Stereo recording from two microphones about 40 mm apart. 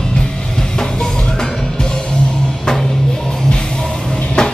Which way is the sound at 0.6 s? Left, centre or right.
Centre.